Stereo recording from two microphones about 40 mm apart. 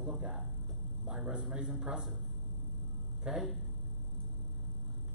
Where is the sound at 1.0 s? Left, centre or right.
Right.